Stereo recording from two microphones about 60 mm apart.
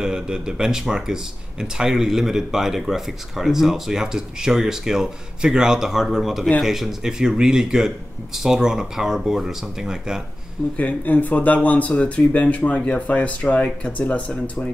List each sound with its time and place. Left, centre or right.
0.0 s speech: centre
10.8 s speech: left